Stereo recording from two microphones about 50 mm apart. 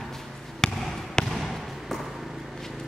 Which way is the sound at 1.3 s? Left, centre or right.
Centre.